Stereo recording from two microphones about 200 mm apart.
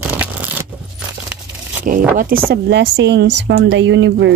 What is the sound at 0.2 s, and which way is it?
Keys jangling, 10° right (ahead or behind).